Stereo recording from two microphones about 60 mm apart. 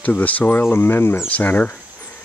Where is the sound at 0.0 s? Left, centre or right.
Left.